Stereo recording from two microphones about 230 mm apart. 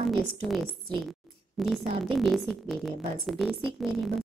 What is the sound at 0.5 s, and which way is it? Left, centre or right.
A woman's voice, centre.